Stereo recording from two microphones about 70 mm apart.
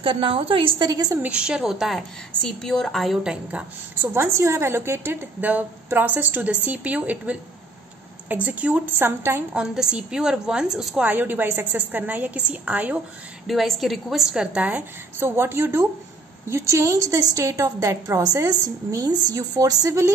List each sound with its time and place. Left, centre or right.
0.7 s a woman's voice: right
1.2 s a woman's voice: centre
2.0 s a woman's voice: centre
4.0 s a woman's voice: right
9.5 s a woman's voice: centre
11.1 s a woman's voice: right
13.5 s a woman's voice: centre; by 14.9 s right
15.1 s a woman's voice: right
19.0 s a woman's voice: right